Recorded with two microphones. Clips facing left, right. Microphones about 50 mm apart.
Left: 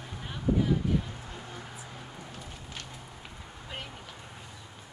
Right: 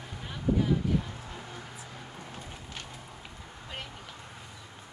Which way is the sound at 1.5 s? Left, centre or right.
Centre.